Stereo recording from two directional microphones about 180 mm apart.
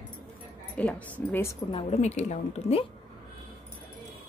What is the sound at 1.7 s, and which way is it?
Speech, 35° left (ahead or behind).